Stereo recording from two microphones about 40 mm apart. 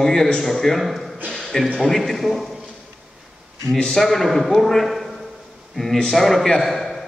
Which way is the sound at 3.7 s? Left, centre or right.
Left.